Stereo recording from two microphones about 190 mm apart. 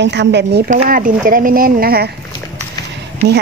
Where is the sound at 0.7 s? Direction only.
45° right (ahead or behind).